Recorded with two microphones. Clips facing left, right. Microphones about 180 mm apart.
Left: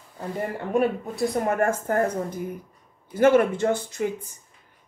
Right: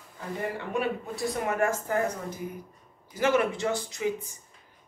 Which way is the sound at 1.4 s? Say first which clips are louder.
Left 1 dB; 50° left (ahead or behind).